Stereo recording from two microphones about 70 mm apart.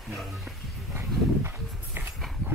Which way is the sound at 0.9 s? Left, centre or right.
Right.